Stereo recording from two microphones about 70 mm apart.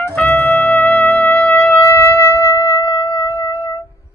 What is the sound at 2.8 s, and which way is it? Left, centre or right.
Music, left.